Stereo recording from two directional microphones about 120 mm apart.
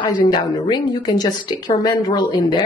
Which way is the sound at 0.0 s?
35° left (ahead or behind).